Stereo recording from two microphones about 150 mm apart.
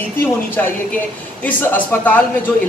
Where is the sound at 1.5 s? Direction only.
10° left (ahead or behind).